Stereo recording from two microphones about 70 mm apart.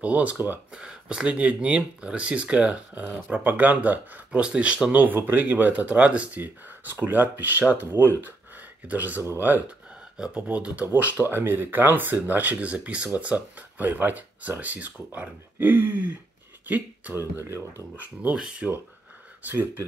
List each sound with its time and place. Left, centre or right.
0.0 s speech: centre
10.9 s speech: right
17.1 s speech: right
18.3 s speech: centre
19.4 s speech: right